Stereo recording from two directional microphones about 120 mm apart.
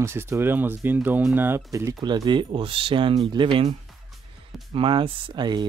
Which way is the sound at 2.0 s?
40° right (ahead or behind).